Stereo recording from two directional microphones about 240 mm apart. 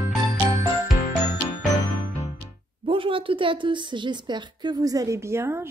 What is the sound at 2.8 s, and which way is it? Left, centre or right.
A woman's voice, right.